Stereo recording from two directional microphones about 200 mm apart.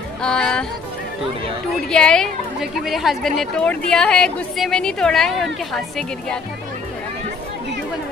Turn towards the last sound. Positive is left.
turn(degrees=0)  # may be behind; listen again after turning